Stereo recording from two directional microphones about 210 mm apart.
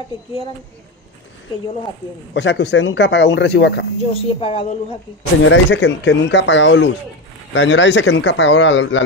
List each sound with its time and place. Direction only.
2.3 s speech: 55° left (ahead or behind)
4.0 s a woman's voice: 30° left (ahead or behind)
5.4 s speech: 60° left (ahead or behind)